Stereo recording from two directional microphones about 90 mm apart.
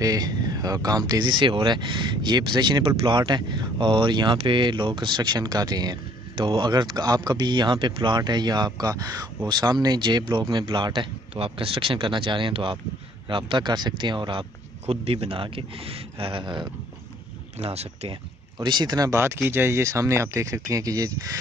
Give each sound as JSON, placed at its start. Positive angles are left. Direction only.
{"t": 0.0, "sound": "speech", "side_deg": -45}
{"t": 6.3, "sound": "speech", "side_deg": -70}
{"t": 15.0, "sound": "a man's voice", "side_deg": -90}
{"t": 17.6, "sound": "speech", "side_deg": -75}
{"t": 19.1, "sound": "speech", "side_deg": -30}